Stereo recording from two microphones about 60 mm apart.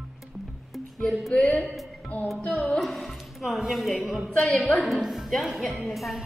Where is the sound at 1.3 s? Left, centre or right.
Centre.